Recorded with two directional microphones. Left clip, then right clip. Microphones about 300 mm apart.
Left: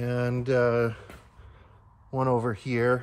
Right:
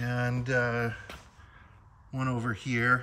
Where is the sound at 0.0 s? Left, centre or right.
Centre.